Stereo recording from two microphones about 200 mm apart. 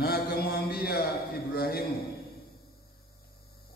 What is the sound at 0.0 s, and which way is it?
Mantra, 50° left (ahead or behind).